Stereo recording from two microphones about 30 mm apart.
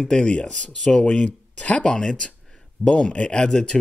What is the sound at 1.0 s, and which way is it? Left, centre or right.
Speech, left.